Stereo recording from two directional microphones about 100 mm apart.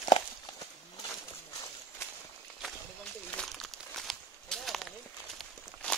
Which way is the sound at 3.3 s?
5° left (ahead or behind).